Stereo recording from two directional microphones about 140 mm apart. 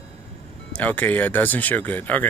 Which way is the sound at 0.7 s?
10° left (ahead or behind).